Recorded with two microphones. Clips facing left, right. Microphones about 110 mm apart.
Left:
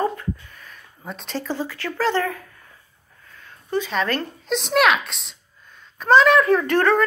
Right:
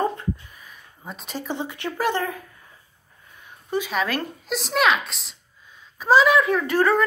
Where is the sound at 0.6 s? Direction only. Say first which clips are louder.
Left 2 dB; 5° right (ahead or behind).